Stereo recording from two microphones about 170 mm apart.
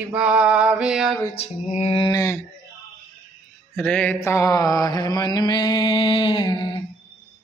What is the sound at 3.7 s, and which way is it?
Mantra, 5° left (ahead or behind).